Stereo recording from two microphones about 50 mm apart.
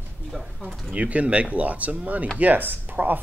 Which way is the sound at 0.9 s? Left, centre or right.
Right.